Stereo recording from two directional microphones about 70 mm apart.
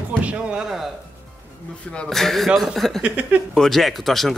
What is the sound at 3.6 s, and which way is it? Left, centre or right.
Speech, centre.